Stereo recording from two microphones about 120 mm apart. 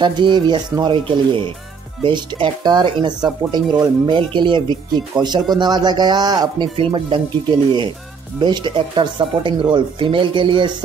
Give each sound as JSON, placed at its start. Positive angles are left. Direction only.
{"t": 0.0, "sound": "speech", "side_deg": -40}
{"t": 8.4, "sound": "speech", "side_deg": -40}